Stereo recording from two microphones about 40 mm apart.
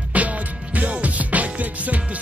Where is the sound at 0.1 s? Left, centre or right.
Right.